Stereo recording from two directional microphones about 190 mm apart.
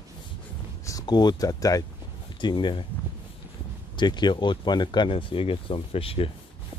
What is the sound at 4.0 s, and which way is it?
Speech, 25° left (ahead or behind).